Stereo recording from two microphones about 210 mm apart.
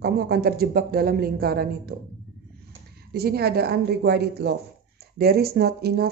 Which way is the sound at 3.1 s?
50° right (ahead or behind).